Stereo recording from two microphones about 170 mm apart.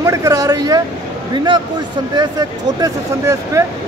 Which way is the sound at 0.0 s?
20° right (ahead or behind).